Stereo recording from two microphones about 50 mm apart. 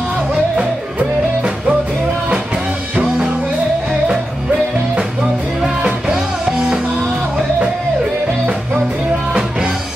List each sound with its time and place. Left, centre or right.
0.6 s music: right
5.8 s music: centre